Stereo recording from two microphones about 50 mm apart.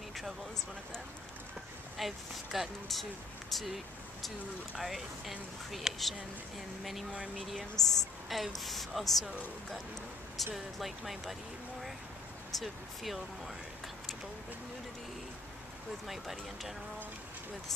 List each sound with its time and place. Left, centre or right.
2.0 s speech: centre
7.1 s speech: centre
7.8 s speech: centre
10.3 s speech: centre
12.5 s speech: centre
16.1 s speech: centre